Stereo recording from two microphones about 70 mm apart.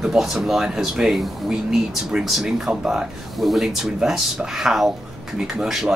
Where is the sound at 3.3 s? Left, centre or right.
Centre.